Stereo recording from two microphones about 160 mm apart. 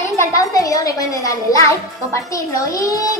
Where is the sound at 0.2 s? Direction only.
20° left (ahead or behind).